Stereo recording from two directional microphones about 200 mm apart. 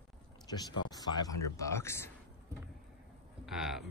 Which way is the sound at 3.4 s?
Centre (ahead or behind).